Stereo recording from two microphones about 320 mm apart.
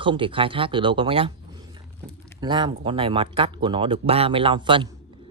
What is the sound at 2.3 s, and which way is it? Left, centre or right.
Speech, centre.